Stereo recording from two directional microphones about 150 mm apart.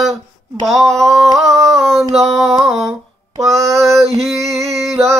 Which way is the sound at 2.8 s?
20° right (ahead or behind).